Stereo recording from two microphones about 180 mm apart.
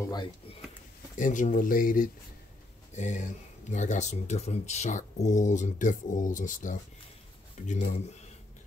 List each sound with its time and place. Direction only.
0.0 s speech: 25° left (ahead or behind)
1.1 s speech: 45° left (ahead or behind)